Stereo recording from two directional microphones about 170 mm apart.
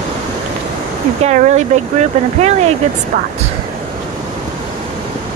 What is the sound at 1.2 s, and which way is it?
Speech, 45° right (ahead or behind).